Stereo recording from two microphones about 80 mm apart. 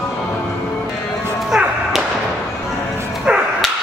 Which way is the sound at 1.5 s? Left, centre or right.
Centre.